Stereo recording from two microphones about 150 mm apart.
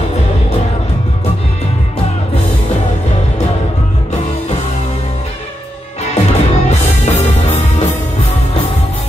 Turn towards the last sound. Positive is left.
turn(degrees=50)  # may be behind; listen again after turning